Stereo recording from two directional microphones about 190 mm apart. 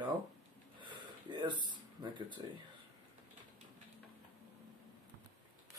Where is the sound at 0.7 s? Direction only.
25° right (ahead or behind).